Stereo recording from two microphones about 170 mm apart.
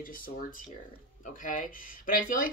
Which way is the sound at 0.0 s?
55° left (ahead or behind).